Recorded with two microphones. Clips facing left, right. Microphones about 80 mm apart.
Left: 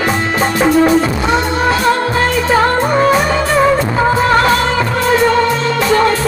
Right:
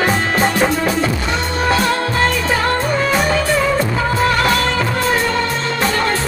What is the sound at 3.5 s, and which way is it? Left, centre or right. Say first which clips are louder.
Music: left 5 dB; left.